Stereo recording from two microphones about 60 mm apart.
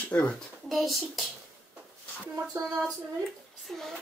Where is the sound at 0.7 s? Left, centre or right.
Centre.